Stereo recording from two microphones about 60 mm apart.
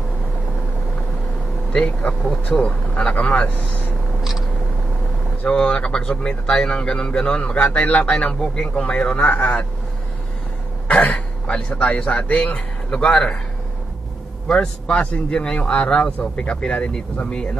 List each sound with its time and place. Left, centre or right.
1.7 s a man's voice: centre
4.2 s a sound: centre
5.4 s a man's voice: centre
10.9 s throat clearing: centre
11.8 s a man's voice: left
14.5 s a man's voice: centre